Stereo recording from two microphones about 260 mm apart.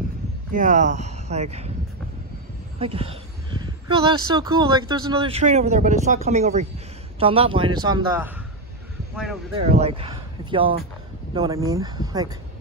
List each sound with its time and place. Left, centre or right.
0.5 s speech: right
2.8 s a sound: right
3.9 s speech: centre
9.1 s speech: centre
9.8 s speech: right